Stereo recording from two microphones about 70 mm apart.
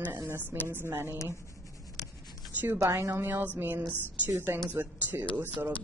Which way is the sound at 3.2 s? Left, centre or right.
Right.